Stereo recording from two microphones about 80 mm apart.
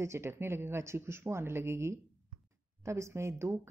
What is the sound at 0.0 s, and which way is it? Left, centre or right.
Speech, right.